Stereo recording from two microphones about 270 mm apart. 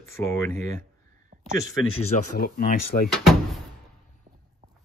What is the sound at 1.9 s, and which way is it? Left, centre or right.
Speech, left.